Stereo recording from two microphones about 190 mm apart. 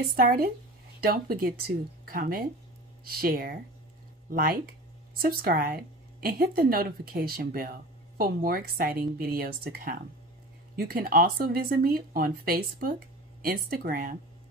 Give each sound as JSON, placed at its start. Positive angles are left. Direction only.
{"t": 0.1, "sound": "speech", "side_deg": -50}